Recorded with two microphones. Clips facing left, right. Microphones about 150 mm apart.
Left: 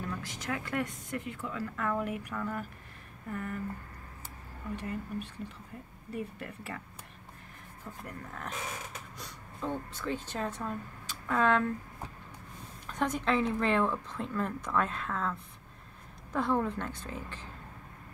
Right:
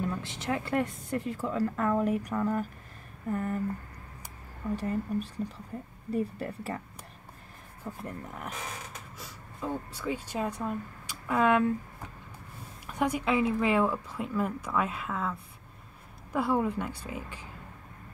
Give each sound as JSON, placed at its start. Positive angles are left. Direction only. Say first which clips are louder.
{"t": 0.0, "sound": "speech", "louder": "right 5 dB", "side_deg": -25}
{"t": 4.7, "sound": "speech", "louder": "right 6 dB", "side_deg": -35}
{"t": 8.0, "sound": "speech", "louder": "right 1 dB", "side_deg": -15}
{"t": 12.8, "sound": "speech", "louder": "right 2 dB", "side_deg": -10}
{"t": 16.3, "sound": "speech", "louder": "right 2 dB", "side_deg": -10}